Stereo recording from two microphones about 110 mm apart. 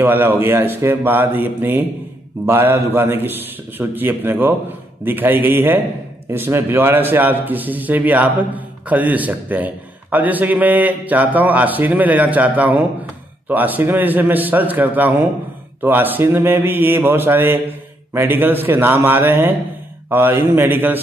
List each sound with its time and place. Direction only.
0.0 s a man's voice: 20° right (ahead or behind)